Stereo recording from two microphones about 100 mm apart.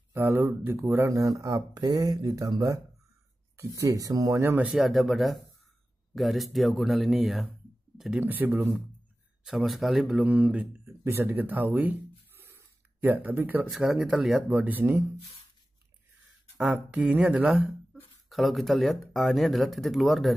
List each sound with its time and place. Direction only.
0.1 s speech: 25° right (ahead or behind)
4.6 s speech: 5° right (ahead or behind)
8.2 s speech: 15° right (ahead or behind)
9.4 s speech: 5° right (ahead or behind)
10.2 s speech: 15° right (ahead or behind)
10.9 s speech: 25° right (ahead or behind)
13.6 s speech: 5° right (ahead or behind)
14.5 s speech: 15° right (ahead or behind)
16.7 s speech: 15° right (ahead or behind)